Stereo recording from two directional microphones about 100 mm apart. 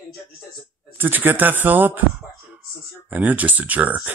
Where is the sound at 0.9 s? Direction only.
20° right (ahead or behind).